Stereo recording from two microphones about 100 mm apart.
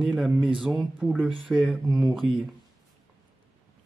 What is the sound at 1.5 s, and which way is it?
Speech, 5° right (ahead or behind).